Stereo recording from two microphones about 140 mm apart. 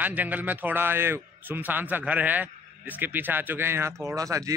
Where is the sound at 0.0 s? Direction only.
10° right (ahead or behind).